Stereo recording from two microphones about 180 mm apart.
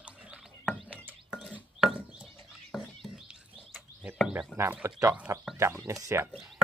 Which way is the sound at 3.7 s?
5° right (ahead or behind).